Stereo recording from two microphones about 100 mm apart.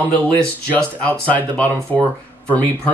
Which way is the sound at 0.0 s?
15° left (ahead or behind).